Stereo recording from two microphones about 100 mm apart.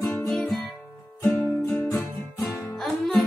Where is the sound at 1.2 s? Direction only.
15° left (ahead or behind).